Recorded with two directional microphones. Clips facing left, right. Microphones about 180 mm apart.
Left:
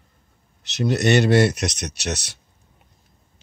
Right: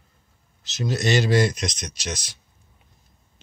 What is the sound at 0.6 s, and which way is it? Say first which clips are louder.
Speech: left 5 dB; 65° left (ahead or behind).